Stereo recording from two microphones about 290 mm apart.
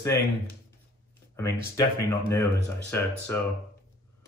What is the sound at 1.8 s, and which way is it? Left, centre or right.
Speech, centre.